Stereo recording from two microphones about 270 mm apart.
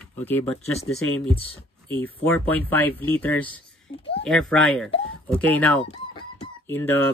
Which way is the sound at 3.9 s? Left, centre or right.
Left.